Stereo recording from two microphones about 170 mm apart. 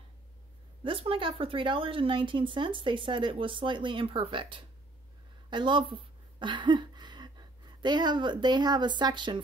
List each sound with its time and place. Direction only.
0.8 s speech: 30° right (ahead or behind)